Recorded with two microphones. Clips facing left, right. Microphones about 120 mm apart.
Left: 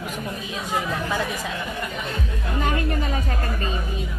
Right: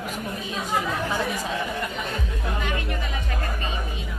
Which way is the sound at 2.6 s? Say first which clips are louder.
Left 8 dB; 40° left (ahead or behind).